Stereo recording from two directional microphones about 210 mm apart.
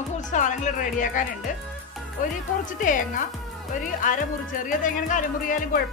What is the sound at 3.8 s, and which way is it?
A woman's voice, 40° left (ahead or behind).